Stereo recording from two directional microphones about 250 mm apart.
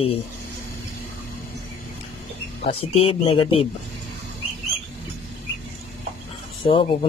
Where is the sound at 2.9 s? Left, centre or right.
Left.